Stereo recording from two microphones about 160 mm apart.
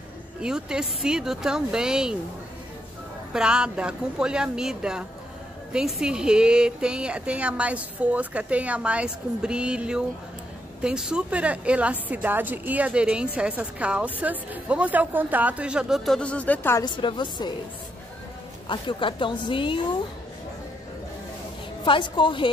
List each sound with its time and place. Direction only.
0.4 s speech: 5° right (ahead or behind)
3.3 s a woman's voice: 5° right (ahead or behind); by 16.8 s 10° left (ahead or behind)
16.8 s speech: 30° left (ahead or behind)
18.7 s a woman's voice: 30° left (ahead or behind)
21.8 s a woman's voice: 30° left (ahead or behind)